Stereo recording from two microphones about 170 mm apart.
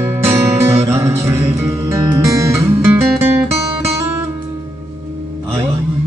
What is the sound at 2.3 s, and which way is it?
Music, 15° right (ahead or behind).